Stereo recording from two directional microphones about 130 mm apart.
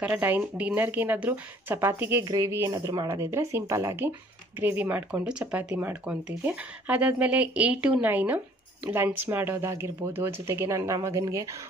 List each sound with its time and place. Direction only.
0.0 s speech: 10° right (ahead or behind)